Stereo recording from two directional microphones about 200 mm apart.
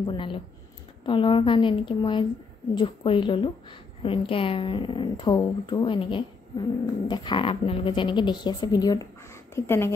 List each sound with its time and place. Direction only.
0.0 s speech: 25° left (ahead or behind)